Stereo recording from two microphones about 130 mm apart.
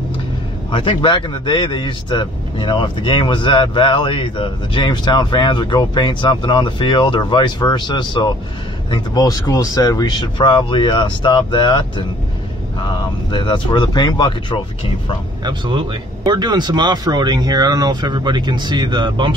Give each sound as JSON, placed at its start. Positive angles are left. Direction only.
{"t": 0.7, "sound": "speech", "side_deg": 40}
{"t": 13.3, "sound": "speech", "side_deg": 35}
{"t": 15.4, "sound": "speech", "side_deg": -40}